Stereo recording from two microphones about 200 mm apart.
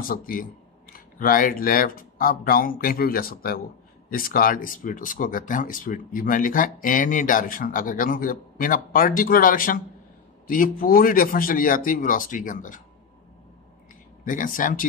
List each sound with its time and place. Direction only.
0.1 s speech: 45° left (ahead or behind)
14.2 s speech: 40° left (ahead or behind)